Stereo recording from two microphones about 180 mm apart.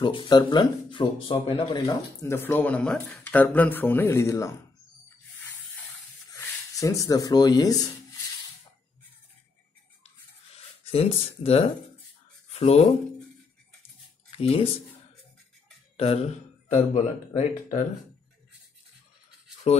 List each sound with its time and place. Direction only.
0.0 s speech: 25° left (ahead or behind)
6.3 s speech: 15° left (ahead or behind)
10.9 s speech: 35° left (ahead or behind)
14.3 s speech: 35° left (ahead or behind)
16.9 s speech: 40° left (ahead or behind)